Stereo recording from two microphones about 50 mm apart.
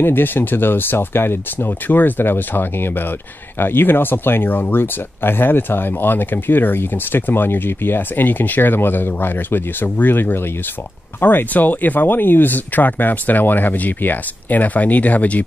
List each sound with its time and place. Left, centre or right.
0.0 s speech: left
1.9 s speech: left